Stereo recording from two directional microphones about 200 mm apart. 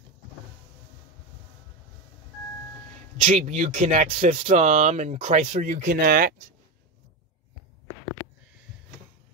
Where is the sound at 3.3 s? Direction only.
40° right (ahead or behind).